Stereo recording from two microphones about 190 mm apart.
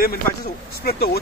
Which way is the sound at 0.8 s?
55° left (ahead or behind).